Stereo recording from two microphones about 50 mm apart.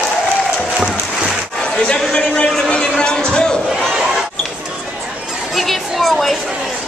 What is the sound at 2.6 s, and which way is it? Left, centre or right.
Music, centre.